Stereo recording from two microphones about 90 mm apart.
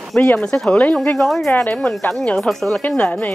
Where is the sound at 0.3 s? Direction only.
15° left (ahead or behind).